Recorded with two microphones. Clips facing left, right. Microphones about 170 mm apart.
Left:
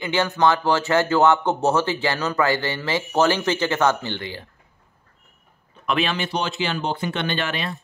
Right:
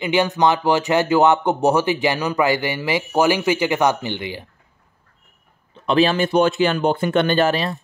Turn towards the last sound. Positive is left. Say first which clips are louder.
# right 8 dB
turn(degrees=-40)  # may be behind; listen again after turning